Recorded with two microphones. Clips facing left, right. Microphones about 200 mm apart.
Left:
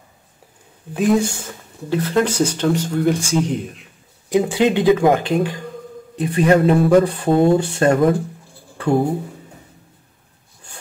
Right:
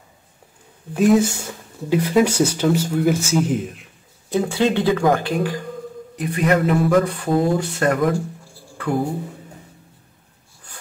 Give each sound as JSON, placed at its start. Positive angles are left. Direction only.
{"t": 0.9, "sound": "speech", "side_deg": 0}
{"t": 4.3, "sound": "speech", "side_deg": 15}
{"t": 8.7, "sound": "a sound", "side_deg": 30}